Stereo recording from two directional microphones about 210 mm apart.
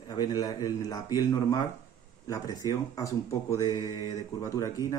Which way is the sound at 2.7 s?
15° left (ahead or behind).